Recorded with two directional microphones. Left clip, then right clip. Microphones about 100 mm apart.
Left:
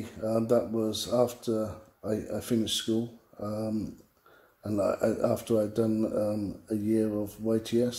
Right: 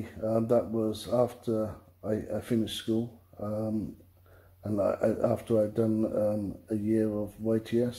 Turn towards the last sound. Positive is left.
turn(degrees=10)  # may be behind; listen again after turning